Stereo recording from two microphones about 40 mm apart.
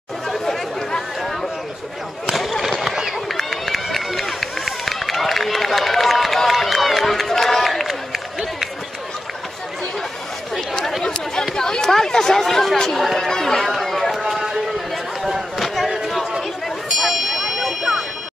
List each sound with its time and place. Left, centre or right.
0.3 s chatter: centre
2.3 s a sound: centre
3.3 s run: centre
11.0 s chatter: centre
12.7 s speech: centre
13.0 s chatter: centre
13.7 s a sound: centre